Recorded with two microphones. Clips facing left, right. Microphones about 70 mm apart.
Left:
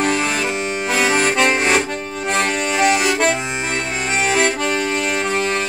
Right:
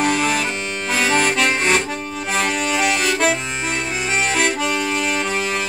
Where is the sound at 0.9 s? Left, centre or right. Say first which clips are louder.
Left 1 dB; centre.